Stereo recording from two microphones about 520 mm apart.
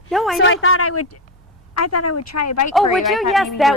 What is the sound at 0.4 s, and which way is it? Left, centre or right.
Speech, left.